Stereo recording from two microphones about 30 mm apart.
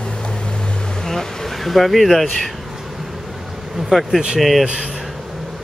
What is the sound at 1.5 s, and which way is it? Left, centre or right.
Speech, centre.